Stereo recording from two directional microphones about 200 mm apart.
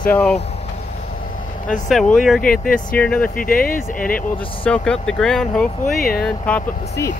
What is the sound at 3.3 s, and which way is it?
Speech, 45° left (ahead or behind).